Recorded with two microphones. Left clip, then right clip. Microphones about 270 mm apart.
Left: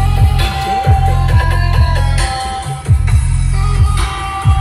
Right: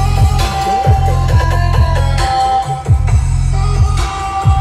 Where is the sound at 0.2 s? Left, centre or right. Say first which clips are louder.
Right 3 dB; right.